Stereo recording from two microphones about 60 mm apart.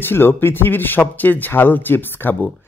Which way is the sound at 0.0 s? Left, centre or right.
Left.